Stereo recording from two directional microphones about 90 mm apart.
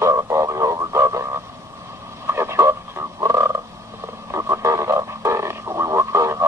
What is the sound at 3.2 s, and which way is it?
Frog, 35° right (ahead or behind).